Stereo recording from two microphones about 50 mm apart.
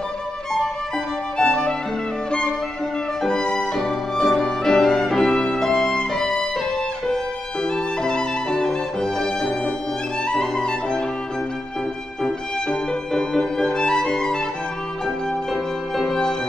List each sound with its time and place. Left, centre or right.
1.4 s music: centre
3.2 s music: centre
7.6 s music: centre
12.2 s music: centre
16.1 s music: centre